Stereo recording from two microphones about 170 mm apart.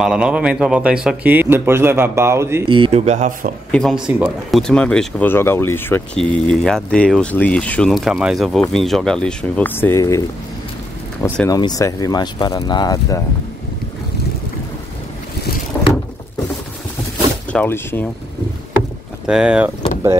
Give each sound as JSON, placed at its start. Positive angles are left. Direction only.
{"t": 0.0, "sound": "speech", "side_deg": -5}
{"t": 2.7, "sound": "speech", "side_deg": -35}
{"t": 3.7, "sound": "speech", "side_deg": 0}
{"t": 11.2, "sound": "speech", "side_deg": 15}
{"t": 17.5, "sound": "speech", "side_deg": 10}
{"t": 19.2, "sound": "speech", "side_deg": -5}